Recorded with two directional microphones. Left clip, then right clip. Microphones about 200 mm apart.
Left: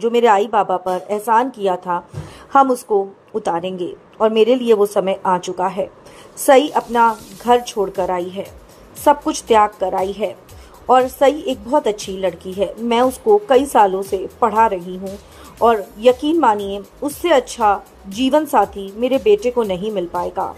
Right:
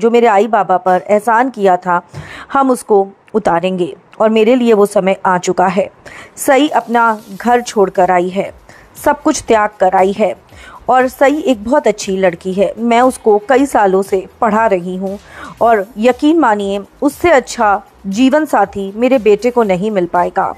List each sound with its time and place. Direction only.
0.0 s a woman's voice: 45° right (ahead or behind)
16.0 s a woman's voice: 45° right (ahead or behind)